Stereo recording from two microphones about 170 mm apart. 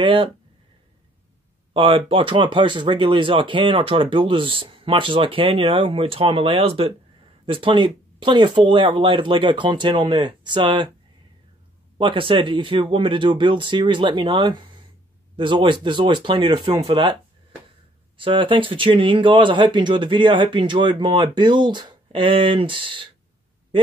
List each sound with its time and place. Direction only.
0.0 s speech: 30° right (ahead or behind)
1.7 s speech: 30° right (ahead or behind)
12.0 s speech: 30° right (ahead or behind)